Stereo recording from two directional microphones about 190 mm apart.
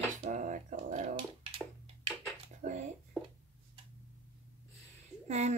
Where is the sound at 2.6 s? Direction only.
40° right (ahead or behind).